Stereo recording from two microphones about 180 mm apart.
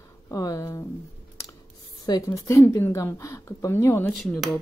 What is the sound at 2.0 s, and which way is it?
Speech, 20° left (ahead or behind).